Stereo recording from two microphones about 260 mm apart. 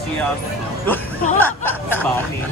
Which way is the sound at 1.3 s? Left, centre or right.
Centre.